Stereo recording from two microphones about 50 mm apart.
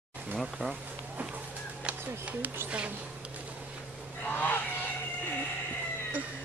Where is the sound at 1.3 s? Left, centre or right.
Right.